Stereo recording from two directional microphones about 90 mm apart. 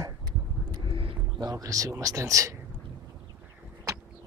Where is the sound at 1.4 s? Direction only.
40° right (ahead or behind).